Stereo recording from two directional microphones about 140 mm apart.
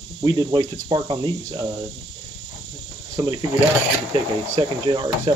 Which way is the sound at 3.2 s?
25° right (ahead or behind).